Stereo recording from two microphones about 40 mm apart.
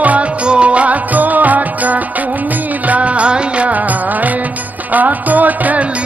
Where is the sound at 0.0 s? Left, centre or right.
Right.